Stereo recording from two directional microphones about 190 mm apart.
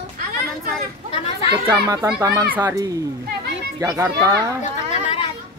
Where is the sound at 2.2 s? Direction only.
20° right (ahead or behind).